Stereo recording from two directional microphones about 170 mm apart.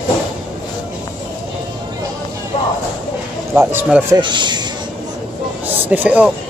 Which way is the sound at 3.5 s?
15° right (ahead or behind).